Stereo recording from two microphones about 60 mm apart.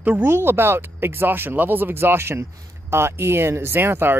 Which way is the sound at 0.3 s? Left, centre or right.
Right.